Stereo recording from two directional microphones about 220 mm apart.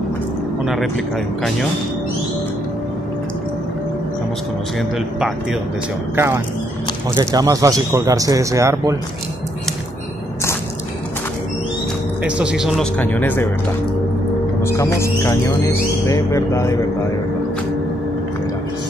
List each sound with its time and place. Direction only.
4.9 s speech: centre (ahead or behind)
12.2 s speech: 5° right (ahead or behind)
13.0 s speech: 10° left (ahead or behind)
14.6 s speech: 10° left (ahead or behind)